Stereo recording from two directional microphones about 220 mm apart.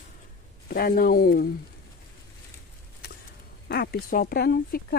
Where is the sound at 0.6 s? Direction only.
40° left (ahead or behind).